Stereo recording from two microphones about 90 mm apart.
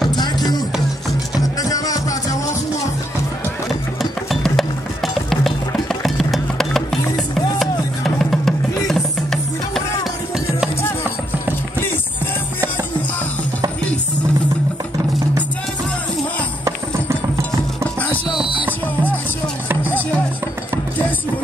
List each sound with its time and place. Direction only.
0.1 s music: 50° left (ahead or behind)
4.0 s music: centre (ahead or behind)